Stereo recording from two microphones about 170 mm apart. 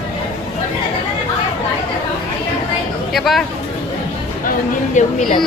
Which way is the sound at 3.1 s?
Centre (ahead or behind).